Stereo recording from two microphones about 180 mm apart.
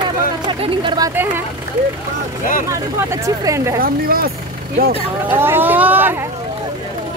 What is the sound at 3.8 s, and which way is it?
Speech, 55° right (ahead or behind).